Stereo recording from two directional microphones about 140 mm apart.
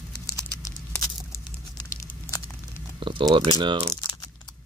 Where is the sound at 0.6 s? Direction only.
25° left (ahead or behind).